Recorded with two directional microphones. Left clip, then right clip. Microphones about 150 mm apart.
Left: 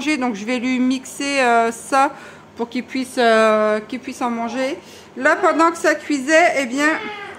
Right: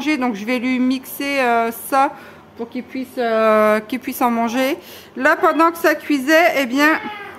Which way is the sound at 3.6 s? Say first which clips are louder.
Right 3 dB; 25° right (ahead or behind).